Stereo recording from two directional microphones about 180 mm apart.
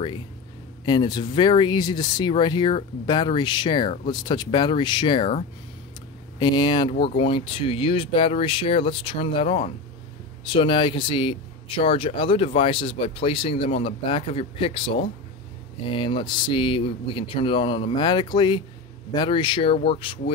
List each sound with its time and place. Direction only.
0.8 s speech: 25° left (ahead or behind)
6.4 s speech: 25° left (ahead or behind)